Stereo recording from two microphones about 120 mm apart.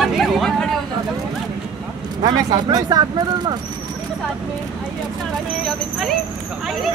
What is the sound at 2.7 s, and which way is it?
Speech, 30° right (ahead or behind).